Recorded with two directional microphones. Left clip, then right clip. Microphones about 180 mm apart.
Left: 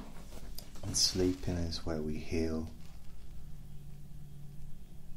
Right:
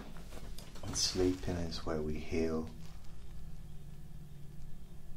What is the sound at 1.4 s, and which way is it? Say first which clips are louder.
Speech: even; 15° left (ahead or behind).